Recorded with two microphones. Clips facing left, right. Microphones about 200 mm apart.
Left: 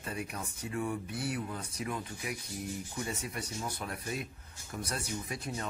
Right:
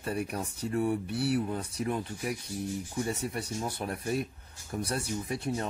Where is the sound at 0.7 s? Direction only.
40° right (ahead or behind).